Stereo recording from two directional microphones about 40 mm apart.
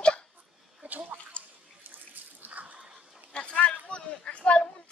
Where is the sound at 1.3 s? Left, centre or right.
Left.